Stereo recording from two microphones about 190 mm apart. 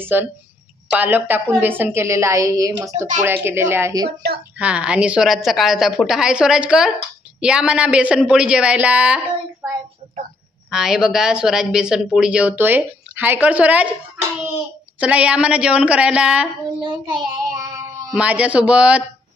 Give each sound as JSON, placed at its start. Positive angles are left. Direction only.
{"t": 0.0, "sound": "a woman's voice", "side_deg": -10}
{"t": 4.6, "sound": "speech", "side_deg": -5}
{"t": 15.0, "sound": "speech", "side_deg": -5}
{"t": 16.8, "sound": "child singing", "side_deg": -25}
{"t": 18.1, "sound": "a woman's voice", "side_deg": -5}